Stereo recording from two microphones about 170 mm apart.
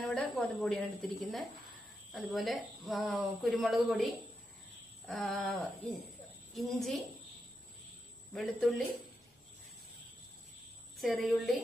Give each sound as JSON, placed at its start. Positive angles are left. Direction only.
{"t": 0.0, "sound": "a woman's voice", "side_deg": 5}
{"t": 8.3, "sound": "a woman's voice", "side_deg": 0}
{"t": 11.0, "sound": "a woman's voice", "side_deg": 0}